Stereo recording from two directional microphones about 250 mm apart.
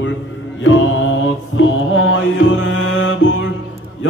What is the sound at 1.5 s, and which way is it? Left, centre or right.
Music, left.